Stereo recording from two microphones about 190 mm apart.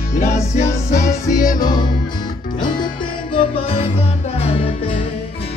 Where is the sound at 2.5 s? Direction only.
25° left (ahead or behind).